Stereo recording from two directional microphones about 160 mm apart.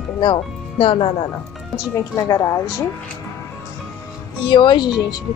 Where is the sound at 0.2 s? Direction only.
35° left (ahead or behind).